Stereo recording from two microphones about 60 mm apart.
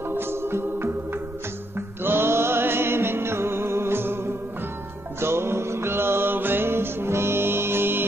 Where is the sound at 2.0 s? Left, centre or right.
Right.